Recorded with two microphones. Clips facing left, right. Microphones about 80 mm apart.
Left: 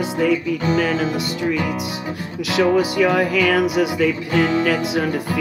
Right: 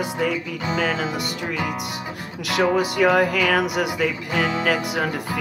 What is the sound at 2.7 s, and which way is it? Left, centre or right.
Music, right.